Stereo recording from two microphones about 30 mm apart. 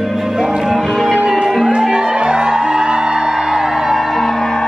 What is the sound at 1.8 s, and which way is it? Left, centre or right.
Music, right.